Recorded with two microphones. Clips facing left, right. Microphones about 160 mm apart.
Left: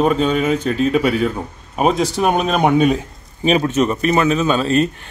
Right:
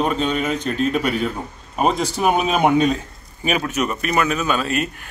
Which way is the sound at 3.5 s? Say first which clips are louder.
Left 6 dB; 30° left (ahead or behind).